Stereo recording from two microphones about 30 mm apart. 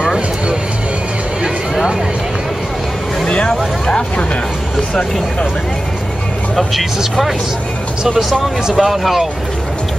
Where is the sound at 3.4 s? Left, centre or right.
Left.